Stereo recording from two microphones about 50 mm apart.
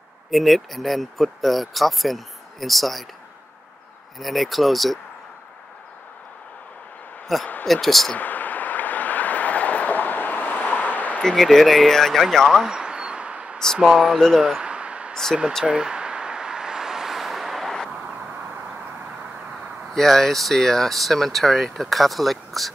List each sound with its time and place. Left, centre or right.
0.3 s speech: centre
4.2 s speech: centre
7.3 s speech: centre
8.2 s vehicle: left
11.1 s speech: centre
12.7 s a sound: centre
13.7 s speech: centre
14.6 s a sound: right
15.6 s vehicle: centre
19.9 s speech: centre